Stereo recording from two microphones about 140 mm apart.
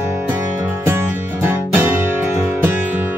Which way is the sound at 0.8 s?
15° right (ahead or behind).